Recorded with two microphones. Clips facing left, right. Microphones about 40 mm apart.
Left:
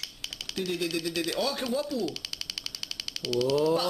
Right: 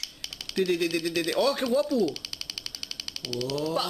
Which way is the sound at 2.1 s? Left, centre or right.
Centre.